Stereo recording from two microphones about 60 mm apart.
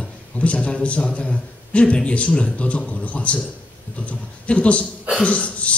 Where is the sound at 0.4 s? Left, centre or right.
Centre.